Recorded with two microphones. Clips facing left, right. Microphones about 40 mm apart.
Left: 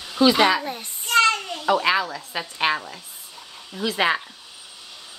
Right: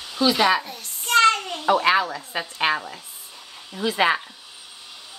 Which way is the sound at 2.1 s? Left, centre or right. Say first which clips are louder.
Right 1 dB; centre.